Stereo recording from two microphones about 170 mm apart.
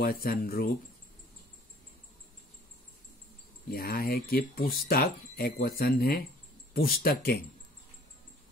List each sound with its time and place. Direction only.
0.0 s speech: 60° left (ahead or behind)
3.7 s speech: 60° left (ahead or behind)